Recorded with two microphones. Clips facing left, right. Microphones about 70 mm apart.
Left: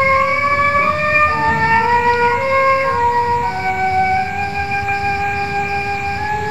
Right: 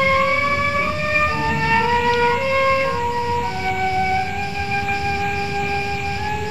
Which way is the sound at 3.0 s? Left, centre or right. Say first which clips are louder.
Left 7 dB; left.